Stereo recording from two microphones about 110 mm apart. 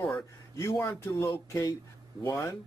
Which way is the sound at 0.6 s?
25° left (ahead or behind).